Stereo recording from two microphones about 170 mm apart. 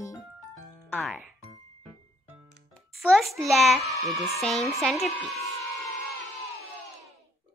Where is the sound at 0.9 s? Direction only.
5° left (ahead or behind).